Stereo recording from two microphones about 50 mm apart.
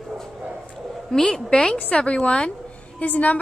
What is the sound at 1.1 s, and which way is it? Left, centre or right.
A woman's voice, centre.